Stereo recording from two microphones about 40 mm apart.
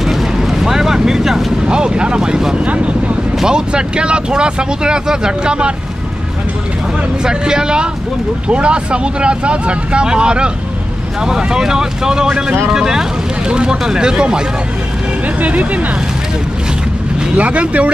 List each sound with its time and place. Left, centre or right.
0.0 s vehicle: centre
1.7 s speech: right
2.6 s speech: right
3.4 s speech: right
7.2 s speech: centre
15.4 s speech: right
17.4 s speech: right